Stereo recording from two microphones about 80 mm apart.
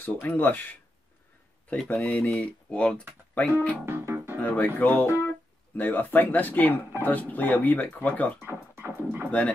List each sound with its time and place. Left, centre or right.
0.0 s speech: left
1.7 s speech: centre
3.8 s music: right
4.4 s speech: left
8.7 s speech: right